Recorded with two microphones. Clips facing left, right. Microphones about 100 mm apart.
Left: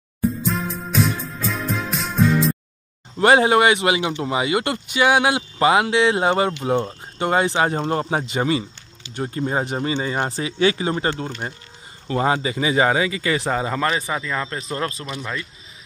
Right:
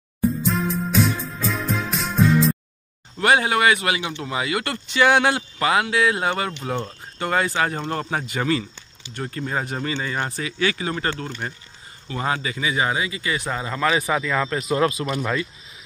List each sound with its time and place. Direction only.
0.4 s music: centre (ahead or behind)
3.2 s speech: 30° left (ahead or behind)
4.8 s speech: 10° left (ahead or behind)
5.6 s speech: 25° left (ahead or behind)
12.1 s speech: 30° left (ahead or behind)
14.0 s speech: 5° right (ahead or behind)
14.8 s speech: 15° right (ahead or behind)